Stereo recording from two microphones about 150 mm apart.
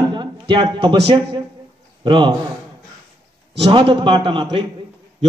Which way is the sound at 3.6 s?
35° right (ahead or behind).